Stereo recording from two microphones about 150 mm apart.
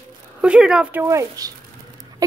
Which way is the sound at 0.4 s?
5° right (ahead or behind).